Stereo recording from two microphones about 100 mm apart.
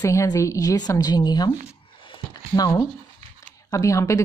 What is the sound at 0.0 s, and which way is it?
Speech, 30° left (ahead or behind).